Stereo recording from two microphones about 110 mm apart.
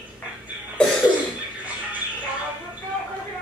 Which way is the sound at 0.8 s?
10° left (ahead or behind).